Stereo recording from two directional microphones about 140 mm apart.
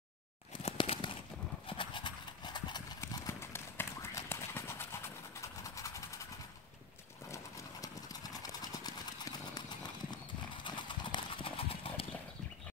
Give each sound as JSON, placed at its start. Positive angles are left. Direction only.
{"t": 0.7, "sound": "crumpling", "side_deg": 35}
{"t": 1.7, "sound": "clip-clop", "side_deg": 35}
{"t": 3.0, "sound": "clip-clop", "side_deg": 20}
{"t": 7.8, "sound": "horse", "side_deg": 25}
{"t": 10.1, "sound": "clip-clop", "side_deg": 35}